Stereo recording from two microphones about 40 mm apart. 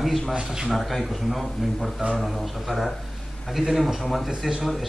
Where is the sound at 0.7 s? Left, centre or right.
Centre.